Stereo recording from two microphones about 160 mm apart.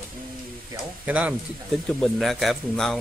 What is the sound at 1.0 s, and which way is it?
Speech, 10° right (ahead or behind).